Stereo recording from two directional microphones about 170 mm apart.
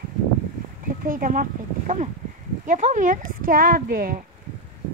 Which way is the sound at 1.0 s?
55° right (ahead or behind).